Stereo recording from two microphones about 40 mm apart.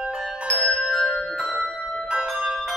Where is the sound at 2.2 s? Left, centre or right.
Centre.